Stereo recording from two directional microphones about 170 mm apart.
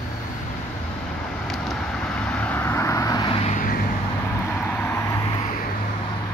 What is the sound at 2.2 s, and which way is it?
Vehicle, 10° left (ahead or behind).